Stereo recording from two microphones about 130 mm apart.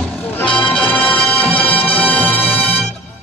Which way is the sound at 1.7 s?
45° left (ahead or behind).